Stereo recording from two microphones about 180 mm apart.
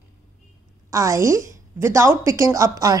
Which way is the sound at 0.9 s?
15° right (ahead or behind).